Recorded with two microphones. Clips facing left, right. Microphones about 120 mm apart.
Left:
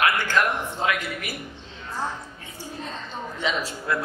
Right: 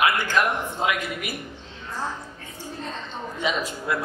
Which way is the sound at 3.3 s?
15° right (ahead or behind).